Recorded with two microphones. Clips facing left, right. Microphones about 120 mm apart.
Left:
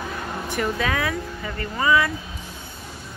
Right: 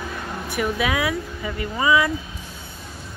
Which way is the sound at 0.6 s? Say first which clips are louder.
Right 2 dB; 10° right (ahead or behind).